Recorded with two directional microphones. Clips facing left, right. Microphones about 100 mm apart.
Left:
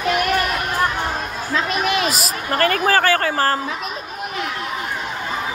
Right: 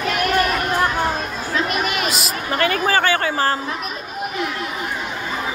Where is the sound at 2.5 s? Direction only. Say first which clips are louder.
Left 1 dB; 45° left (ahead or behind).